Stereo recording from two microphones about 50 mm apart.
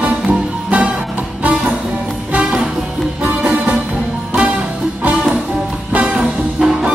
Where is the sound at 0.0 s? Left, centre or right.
Right.